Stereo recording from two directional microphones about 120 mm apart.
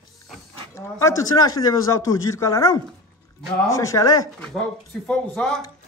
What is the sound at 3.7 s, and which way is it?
Speech, 25° left (ahead or behind).